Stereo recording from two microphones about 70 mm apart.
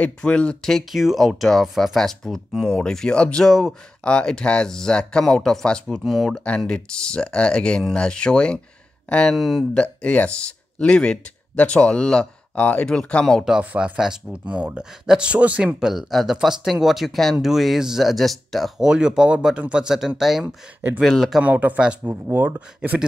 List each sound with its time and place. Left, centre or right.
0.0 s speech: centre
0.7 s speech: centre
9.3 s speech: centre
9.8 s speech: centre
13.7 s speech: centre
13.9 s speech: centre
14.4 s speech: centre
15.9 s speech: centre
18.8 s speech: centre
21.4 s speech: right
22.1 s speech: right
22.8 s speech: centre